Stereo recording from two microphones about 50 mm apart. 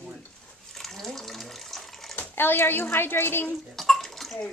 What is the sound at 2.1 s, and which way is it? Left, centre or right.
Speech, left.